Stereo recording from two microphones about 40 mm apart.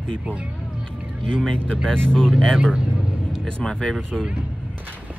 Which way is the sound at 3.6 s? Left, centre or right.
Left.